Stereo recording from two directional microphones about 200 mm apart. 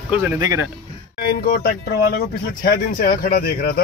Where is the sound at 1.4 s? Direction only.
45° left (ahead or behind).